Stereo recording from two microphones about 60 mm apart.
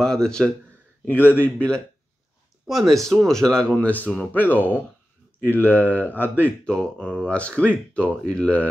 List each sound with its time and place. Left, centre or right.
0.0 s speech: centre
1.0 s speech: left
2.6 s speech: centre
3.7 s speech: left
6.6 s speech: centre